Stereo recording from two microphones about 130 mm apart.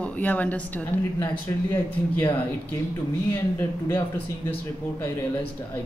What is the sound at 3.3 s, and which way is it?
Speech, 15° left (ahead or behind).